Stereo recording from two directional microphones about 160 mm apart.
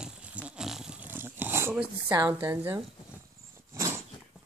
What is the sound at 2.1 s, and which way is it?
Speech, 20° right (ahead or behind).